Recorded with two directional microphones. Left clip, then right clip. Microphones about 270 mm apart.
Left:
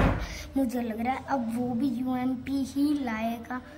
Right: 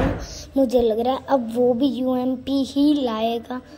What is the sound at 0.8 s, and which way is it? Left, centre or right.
A woman's voice, centre.